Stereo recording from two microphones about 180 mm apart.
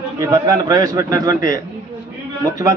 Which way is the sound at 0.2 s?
20° right (ahead or behind).